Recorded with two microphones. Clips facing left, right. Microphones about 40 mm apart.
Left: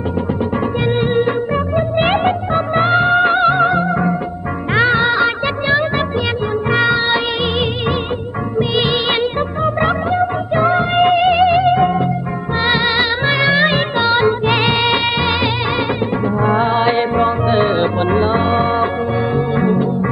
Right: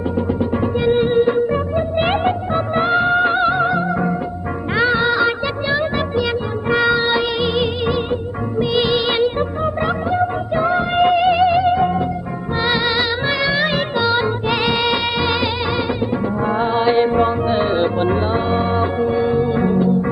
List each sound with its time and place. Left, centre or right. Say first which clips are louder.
0.8 s music: right 2 dB; left
4.9 s music of bollywood: left 2 dB; left
8.7 s music of bollywood: right 1 dB; left
9.8 s music: left 3 dB; left
16.4 s music: left 2 dB; left